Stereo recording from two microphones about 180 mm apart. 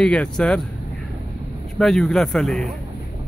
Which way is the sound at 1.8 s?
Centre (ahead or behind).